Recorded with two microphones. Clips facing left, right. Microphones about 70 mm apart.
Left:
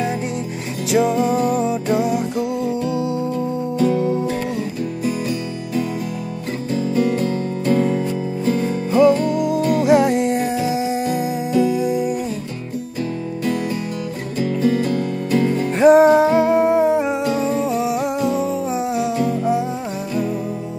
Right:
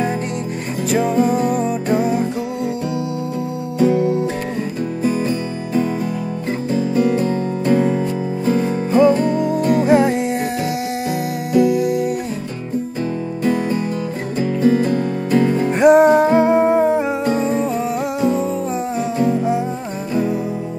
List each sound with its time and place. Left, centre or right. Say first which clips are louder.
0.9 s music: even; centre
3.9 s music: right 2 dB; centre
6.7 s music: right 2 dB; right
9.0 s music: left 1 dB; right
9.7 s music: right 1 dB; centre
14.4 s music: right 3 dB; right
15.7 s music: even; centre
17.2 s music: right 1 dB; right
17.6 s music: left 1 dB; centre